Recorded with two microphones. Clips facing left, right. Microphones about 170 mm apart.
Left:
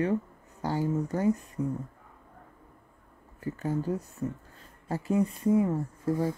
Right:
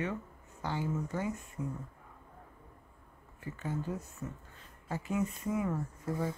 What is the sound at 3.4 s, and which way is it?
Speech, 40° left (ahead or behind).